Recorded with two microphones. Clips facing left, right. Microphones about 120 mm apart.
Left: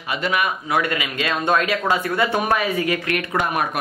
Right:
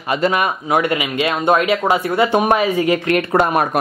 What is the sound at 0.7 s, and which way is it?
Speech, 25° right (ahead or behind).